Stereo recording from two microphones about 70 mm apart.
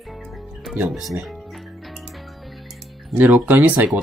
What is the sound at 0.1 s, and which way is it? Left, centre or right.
Music, centre.